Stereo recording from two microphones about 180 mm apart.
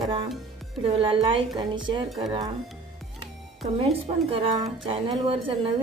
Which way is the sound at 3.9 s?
30° right (ahead or behind).